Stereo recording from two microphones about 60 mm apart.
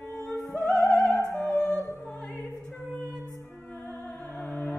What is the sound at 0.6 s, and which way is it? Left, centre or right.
Opera, centre.